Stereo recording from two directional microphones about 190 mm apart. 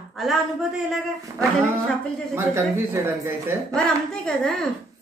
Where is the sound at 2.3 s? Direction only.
15° right (ahead or behind).